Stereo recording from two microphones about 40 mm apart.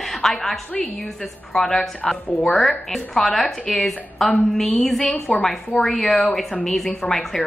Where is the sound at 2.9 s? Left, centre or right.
Centre.